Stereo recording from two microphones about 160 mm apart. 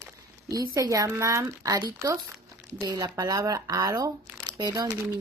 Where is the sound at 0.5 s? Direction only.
20° right (ahead or behind).